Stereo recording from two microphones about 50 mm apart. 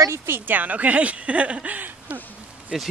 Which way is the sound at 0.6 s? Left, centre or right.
Right.